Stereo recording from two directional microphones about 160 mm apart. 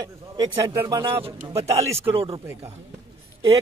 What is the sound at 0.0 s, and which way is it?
A man's voice, 25° right (ahead or behind).